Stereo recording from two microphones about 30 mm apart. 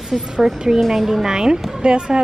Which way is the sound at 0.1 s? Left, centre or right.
Centre.